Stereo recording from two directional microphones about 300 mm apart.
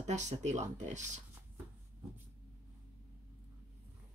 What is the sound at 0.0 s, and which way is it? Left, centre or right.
Speech, right.